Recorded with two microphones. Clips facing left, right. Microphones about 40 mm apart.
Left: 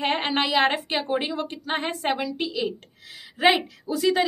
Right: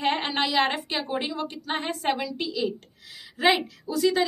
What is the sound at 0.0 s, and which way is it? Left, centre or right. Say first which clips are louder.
A woman's voice: left 1 dB; centre.